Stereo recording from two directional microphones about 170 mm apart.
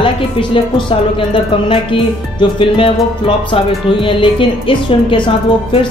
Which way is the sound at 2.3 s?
30° left (ahead or behind).